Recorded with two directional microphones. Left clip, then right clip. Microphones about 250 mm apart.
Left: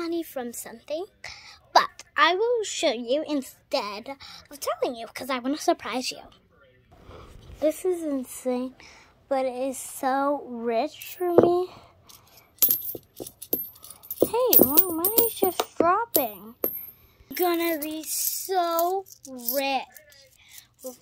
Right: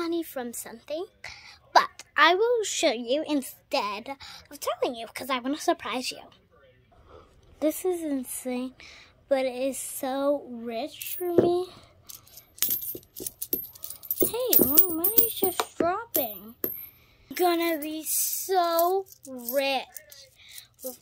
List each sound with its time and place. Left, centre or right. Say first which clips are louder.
0.0 s a sound: even; centre
2.1 s a woman's voice: right 1 dB; centre
7.8 s a woman's voice: left 2 dB; centre
12.8 s coin: left 1 dB; right
13.6 s a sound: right 1 dB; right
14.3 s a woman's voice: left 5 dB; centre
20.5 s whispering: even; centre